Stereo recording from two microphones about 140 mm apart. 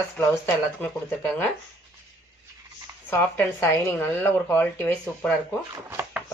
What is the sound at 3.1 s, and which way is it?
Speech, 15° left (ahead or behind).